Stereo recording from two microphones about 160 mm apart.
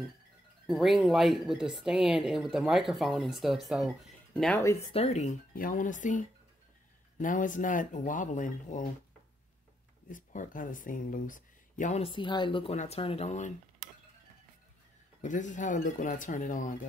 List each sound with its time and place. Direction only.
0.7 s speech: centre (ahead or behind)
4.6 s speech: 20° left (ahead or behind)
4.9 s speech: 45° left (ahead or behind)
5.5 s speech: 60° left (ahead or behind)
10.0 s speech: 55° left (ahead or behind)
12.0 s speech: 30° left (ahead or behind)
12.7 s speech: 40° left (ahead or behind)
15.2 s speech: 50° left (ahead or behind)